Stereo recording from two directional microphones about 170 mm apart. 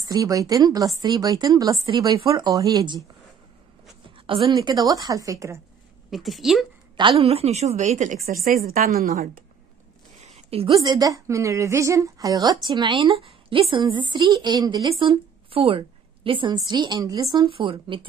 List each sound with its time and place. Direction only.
0.0 s speech: 20° right (ahead or behind)
4.3 s speech: 25° right (ahead or behind)
6.0 s a woman's voice: centre (ahead or behind)
7.0 s a woman's voice: 35° right (ahead or behind)
8.6 s a woman's voice: 55° right (ahead or behind)
10.2 s a sound: 40° right (ahead or behind)
10.8 s speech: 20° right (ahead or behind)